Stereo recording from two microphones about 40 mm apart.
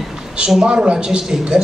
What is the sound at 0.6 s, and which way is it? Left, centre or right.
A man's voice, right.